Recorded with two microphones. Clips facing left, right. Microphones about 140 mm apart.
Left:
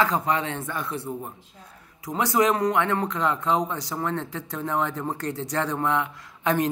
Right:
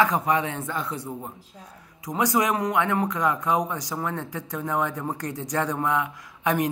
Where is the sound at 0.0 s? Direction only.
15° right (ahead or behind).